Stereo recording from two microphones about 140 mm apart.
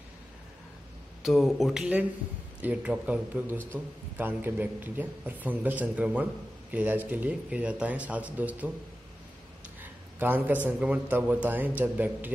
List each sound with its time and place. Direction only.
1.2 s a man's voice: centre (ahead or behind)
10.1 s a man's voice: 15° right (ahead or behind)